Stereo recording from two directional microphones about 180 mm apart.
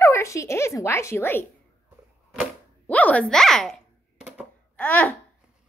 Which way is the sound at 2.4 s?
10° left (ahead or behind).